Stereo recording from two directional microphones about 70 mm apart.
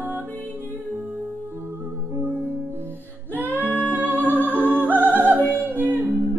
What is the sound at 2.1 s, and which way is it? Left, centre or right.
Music, right.